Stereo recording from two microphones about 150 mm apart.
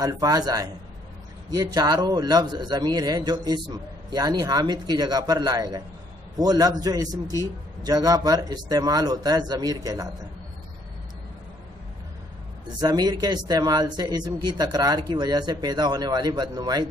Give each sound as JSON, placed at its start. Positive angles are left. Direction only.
{"t": 0.0, "sound": "a man's voice", "side_deg": -25}
{"t": 12.8, "sound": "a man's voice", "side_deg": -25}